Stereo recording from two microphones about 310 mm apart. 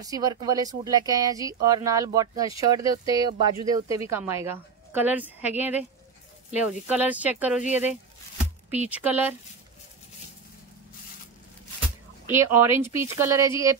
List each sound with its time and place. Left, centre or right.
0.0 s a woman's voice: centre
7.6 s speech: left
8.6 s speech: centre
12.3 s speech: centre